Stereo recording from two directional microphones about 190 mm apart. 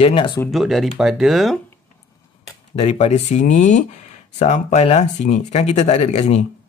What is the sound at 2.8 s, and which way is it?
Speech, 35° left (ahead or behind).